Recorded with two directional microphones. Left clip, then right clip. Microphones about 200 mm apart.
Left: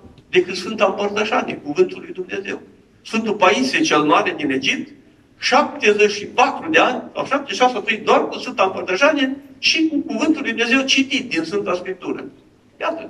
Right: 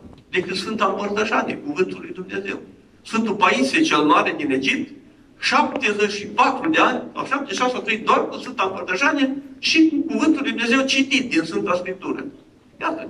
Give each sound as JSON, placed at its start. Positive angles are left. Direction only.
{"t": 0.3, "sound": "a man's voice", "side_deg": 50}